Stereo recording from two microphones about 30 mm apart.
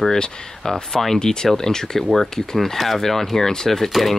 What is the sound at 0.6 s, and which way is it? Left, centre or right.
Speech, centre.